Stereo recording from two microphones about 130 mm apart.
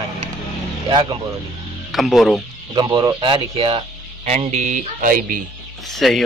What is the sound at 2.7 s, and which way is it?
Speech, 30° right (ahead or behind).